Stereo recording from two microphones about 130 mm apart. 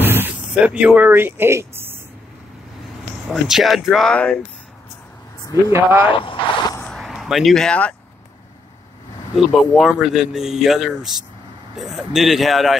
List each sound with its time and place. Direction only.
0.0 s speech: 15° right (ahead or behind)
3.3 s speech: centre (ahead or behind)
5.7 s speech: 15° right (ahead or behind)
6.0 s speech: 40° left (ahead or behind)
6.8 s vehicle: centre (ahead or behind)
9.5 s speech: centre (ahead or behind)